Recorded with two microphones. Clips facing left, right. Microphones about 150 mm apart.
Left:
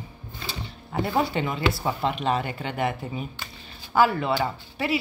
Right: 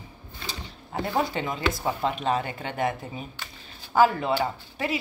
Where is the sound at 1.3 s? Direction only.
35° right (ahead or behind).